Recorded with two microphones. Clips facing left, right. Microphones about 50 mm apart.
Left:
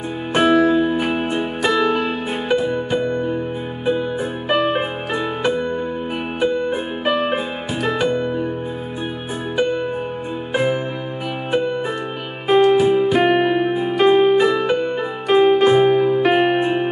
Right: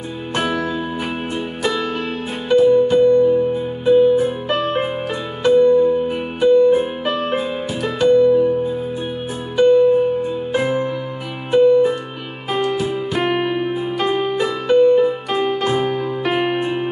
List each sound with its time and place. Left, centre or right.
0.3 s music: centre
9.6 s music: centre
11.5 s music: centre